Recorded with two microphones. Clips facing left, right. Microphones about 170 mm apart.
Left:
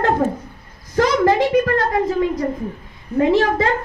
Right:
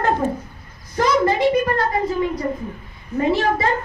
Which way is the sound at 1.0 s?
85° left.